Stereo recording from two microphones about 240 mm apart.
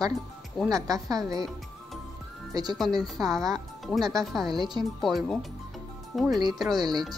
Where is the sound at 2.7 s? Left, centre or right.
Centre.